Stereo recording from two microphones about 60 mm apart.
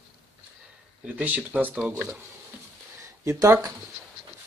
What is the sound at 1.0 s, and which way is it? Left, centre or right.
Speech, right.